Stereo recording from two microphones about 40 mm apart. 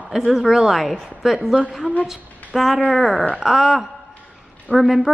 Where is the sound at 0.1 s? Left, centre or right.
Centre.